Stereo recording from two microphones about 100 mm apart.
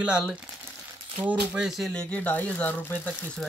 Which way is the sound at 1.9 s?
15° left (ahead or behind).